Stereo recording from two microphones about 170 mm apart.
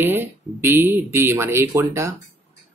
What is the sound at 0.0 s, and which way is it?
Speech, 10° right (ahead or behind).